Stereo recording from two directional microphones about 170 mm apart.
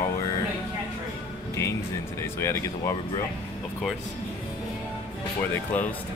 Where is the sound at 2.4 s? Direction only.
20° left (ahead or behind).